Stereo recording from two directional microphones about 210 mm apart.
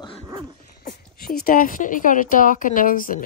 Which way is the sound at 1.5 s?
40° left (ahead or behind).